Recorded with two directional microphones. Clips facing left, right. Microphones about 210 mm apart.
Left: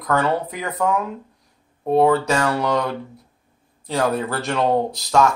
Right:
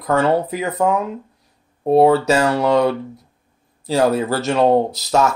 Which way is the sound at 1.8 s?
30° right (ahead or behind).